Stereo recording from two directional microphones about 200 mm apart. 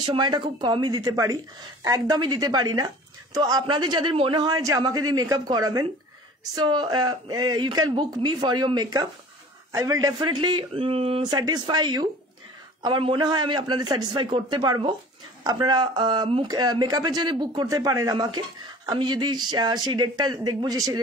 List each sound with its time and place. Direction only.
0.0 s speech: 20° right (ahead or behind)